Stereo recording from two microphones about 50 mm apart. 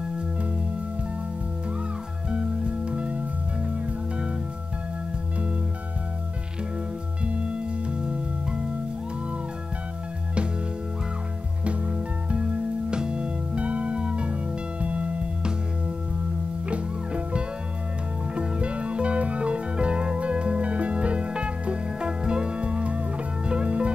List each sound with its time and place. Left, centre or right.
2.3 s music: right
11.6 s music: right
16.6 s music: right